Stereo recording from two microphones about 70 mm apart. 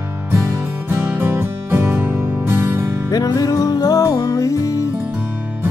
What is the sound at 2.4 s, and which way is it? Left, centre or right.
Music, right.